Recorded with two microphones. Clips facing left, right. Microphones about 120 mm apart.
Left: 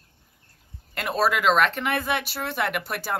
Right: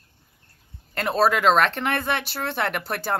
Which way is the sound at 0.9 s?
35° right (ahead or behind).